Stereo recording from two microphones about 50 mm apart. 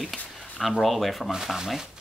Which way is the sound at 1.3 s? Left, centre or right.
Centre.